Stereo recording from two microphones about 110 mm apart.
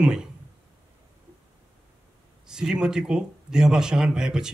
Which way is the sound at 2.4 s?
5° right (ahead or behind).